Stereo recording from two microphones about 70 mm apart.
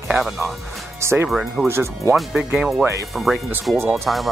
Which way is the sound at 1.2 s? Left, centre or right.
Centre.